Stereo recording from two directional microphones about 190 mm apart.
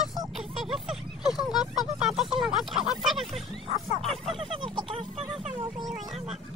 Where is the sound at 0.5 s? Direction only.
Centre (ahead or behind).